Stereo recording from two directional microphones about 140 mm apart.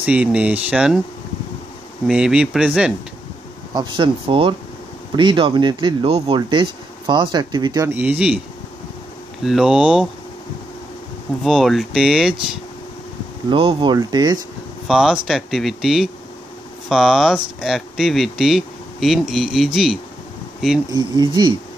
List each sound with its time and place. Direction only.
0.0 s speech: 10° right (ahead or behind)
2.0 s speech: 5° right (ahead or behind)
3.7 s speech: 35° right (ahead or behind)
7.9 s speech: 10° right (ahead or behind)
9.4 s speech: 5° right (ahead or behind)
11.4 s speech: centre (ahead or behind)
13.5 s speech: 35° right (ahead or behind)
14.9 s speech: 5° right (ahead or behind)
20.9 s speech: 35° right (ahead or behind)